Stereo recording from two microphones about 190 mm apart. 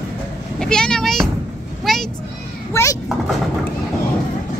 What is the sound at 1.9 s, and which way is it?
Vehicle, centre (ahead or behind).